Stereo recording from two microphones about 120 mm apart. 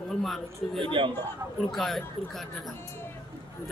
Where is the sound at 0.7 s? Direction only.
45° right (ahead or behind).